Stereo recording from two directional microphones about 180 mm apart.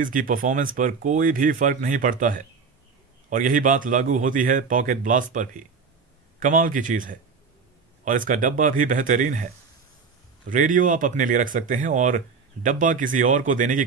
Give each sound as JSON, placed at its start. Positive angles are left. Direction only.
{"t": 0.0, "sound": "speech", "side_deg": -50}
{"t": 10.5, "sound": "speech", "side_deg": -45}